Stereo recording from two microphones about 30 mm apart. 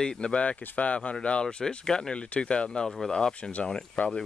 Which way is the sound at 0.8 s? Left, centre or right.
Left.